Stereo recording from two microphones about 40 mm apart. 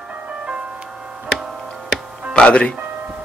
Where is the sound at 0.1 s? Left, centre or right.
Right.